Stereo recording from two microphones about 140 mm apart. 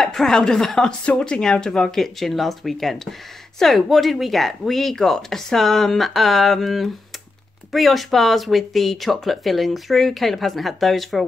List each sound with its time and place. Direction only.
0.0 s speech: 5° left (ahead or behind)